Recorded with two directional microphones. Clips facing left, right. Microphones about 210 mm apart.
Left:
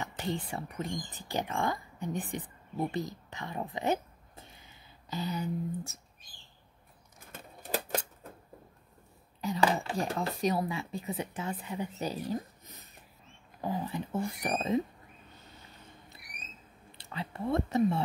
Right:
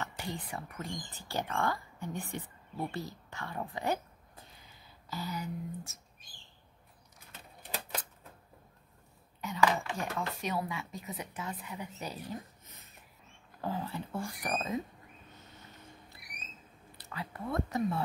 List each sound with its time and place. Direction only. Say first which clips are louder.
0.0 s speech: left 5 dB; 25° left (ahead or behind)
7.3 s a sound: left 7 dB; 45° left (ahead or behind)
9.4 s speech: left 1 dB; 30° left (ahead or behind)
13.6 s speech: left 3 dB; 15° left (ahead or behind)
16.9 s speech: left 3 dB; 25° left (ahead or behind)